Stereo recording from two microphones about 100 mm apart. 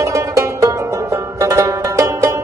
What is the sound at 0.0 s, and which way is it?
Music, 30° right (ahead or behind).